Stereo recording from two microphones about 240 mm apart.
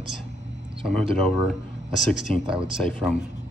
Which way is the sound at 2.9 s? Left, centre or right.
Centre.